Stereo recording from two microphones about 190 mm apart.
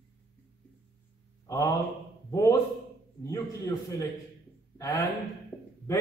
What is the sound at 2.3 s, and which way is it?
Speech, 20° left (ahead or behind).